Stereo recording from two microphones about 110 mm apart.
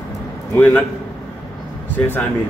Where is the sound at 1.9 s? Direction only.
15° left (ahead or behind).